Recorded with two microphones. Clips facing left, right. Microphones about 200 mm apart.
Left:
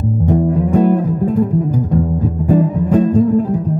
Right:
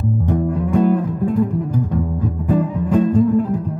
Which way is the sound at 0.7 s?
40° left (ahead or behind).